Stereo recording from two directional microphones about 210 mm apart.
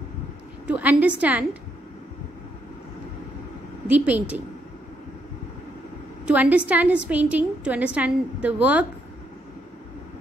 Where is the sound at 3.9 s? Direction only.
5° right (ahead or behind).